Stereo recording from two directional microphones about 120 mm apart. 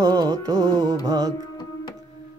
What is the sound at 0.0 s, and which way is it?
Music, 35° right (ahead or behind).